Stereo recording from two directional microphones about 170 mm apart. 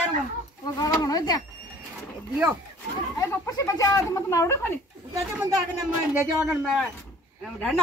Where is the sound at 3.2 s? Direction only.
20° left (ahead or behind).